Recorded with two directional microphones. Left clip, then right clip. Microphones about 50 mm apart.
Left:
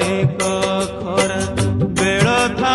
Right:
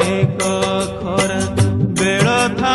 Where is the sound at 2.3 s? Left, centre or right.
Centre.